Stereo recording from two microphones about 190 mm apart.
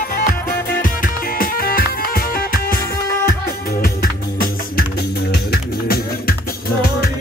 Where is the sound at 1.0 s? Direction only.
50° left (ahead or behind).